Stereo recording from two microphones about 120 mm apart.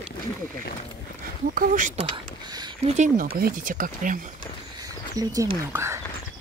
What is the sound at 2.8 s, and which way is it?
Speech, 75° right (ahead or behind).